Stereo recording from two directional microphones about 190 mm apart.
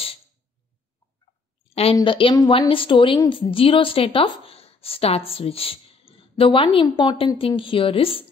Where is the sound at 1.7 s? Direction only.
30° left (ahead or behind).